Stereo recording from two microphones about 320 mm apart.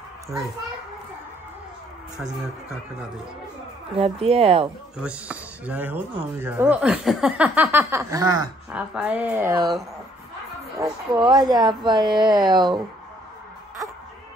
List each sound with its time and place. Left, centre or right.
3.9 s speech: centre
4.9 s speech: centre